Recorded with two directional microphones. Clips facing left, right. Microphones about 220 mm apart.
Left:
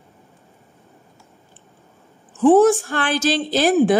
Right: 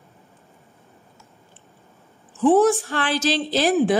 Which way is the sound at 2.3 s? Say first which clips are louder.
Left 3 dB; 50° left (ahead or behind).